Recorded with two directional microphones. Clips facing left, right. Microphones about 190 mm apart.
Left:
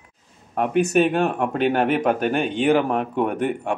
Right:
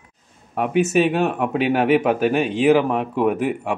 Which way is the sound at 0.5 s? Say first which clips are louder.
Even; centre (ahead or behind).